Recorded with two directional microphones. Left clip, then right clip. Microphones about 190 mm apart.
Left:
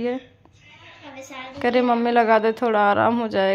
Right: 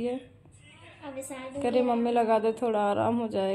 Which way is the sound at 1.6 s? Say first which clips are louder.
Left 6 dB; 15° left (ahead or behind).